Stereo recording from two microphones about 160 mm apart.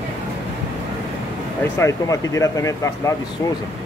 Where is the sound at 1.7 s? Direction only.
20° left (ahead or behind).